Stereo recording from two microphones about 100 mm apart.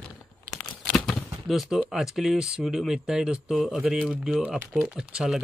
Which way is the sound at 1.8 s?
5° right (ahead or behind).